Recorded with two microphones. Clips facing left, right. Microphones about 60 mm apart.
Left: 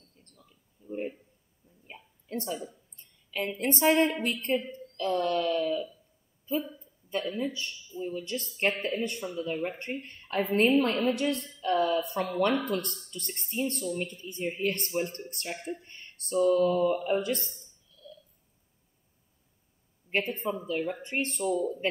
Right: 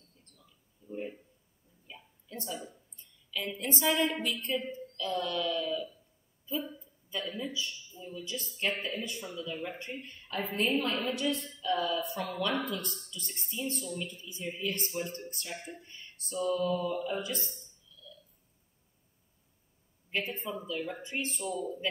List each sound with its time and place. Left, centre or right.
0.2 s a sound: left
2.2 s a woman's voice: left
4.7 s a sound: left
5.3 s a woman's voice: left
7.1 s a woman's voice: left
20.1 s a woman's voice: left